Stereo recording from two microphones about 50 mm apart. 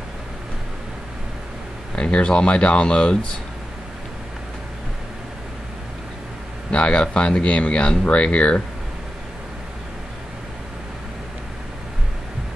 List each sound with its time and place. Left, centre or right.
2.0 s speech: left
6.7 s speech: left